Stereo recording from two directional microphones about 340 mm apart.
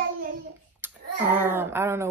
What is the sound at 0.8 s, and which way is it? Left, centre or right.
Hands, centre.